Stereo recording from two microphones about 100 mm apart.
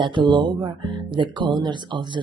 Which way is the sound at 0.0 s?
50° right (ahead or behind).